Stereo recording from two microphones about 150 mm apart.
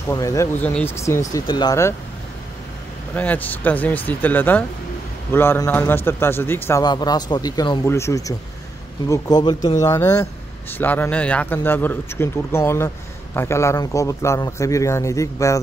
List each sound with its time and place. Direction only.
0.1 s speech: 20° left (ahead or behind)
0.6 s speech: 10° left (ahead or behind)
3.2 s speech: 10° left (ahead or behind)
6.8 s speech: 30° left (ahead or behind)
7.8 s speech: 20° left (ahead or behind)